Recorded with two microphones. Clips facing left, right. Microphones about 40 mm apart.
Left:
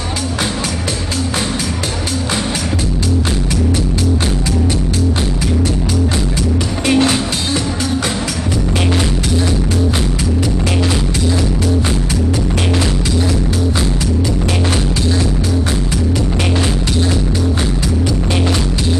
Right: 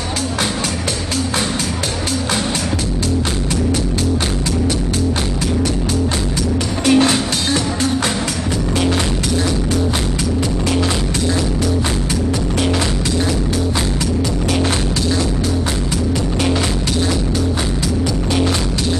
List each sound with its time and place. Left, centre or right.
6.8 s music: left
7.4 s music: right